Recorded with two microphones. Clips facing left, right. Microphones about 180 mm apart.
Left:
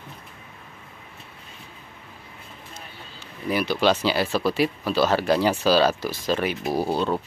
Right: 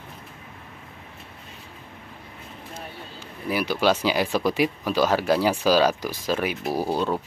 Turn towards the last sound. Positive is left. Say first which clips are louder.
# left 1 dB
turn(degrees=-10)  # may be behind; listen again after turning